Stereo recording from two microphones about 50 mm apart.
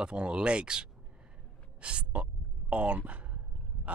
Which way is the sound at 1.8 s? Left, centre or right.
Right.